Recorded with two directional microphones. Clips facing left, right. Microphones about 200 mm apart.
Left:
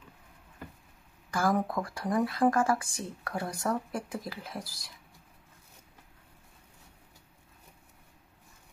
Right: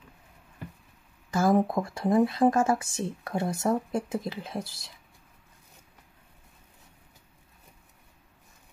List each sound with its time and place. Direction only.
1.3 s speech: 25° right (ahead or behind)